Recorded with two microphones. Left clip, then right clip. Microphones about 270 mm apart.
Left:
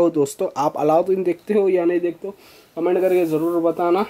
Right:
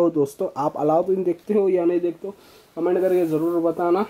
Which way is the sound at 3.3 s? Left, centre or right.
Right.